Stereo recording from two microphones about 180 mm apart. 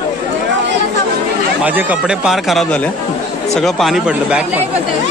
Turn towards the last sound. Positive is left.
turn(degrees=-5)  # may be behind; listen again after turning